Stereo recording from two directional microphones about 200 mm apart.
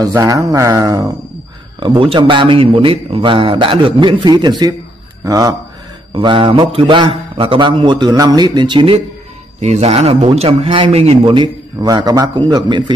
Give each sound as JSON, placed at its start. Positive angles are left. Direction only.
{"t": 0.0, "sound": "speech", "side_deg": -15}